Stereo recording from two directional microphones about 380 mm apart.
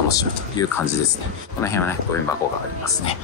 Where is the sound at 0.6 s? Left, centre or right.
Centre.